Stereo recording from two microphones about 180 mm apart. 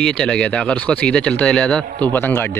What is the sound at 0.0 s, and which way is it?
Speech, 5° left (ahead or behind).